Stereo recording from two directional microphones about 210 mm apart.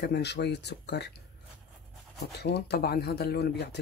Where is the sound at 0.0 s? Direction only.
55° left (ahead or behind).